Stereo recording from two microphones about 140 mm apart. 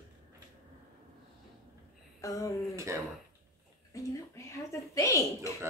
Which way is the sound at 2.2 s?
25° left (ahead or behind).